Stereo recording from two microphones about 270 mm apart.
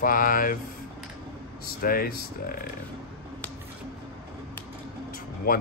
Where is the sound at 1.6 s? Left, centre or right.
Left.